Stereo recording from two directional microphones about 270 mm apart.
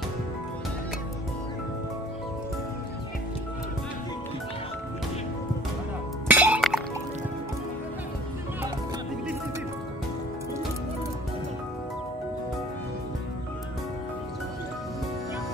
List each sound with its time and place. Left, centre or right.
6.2 s music: centre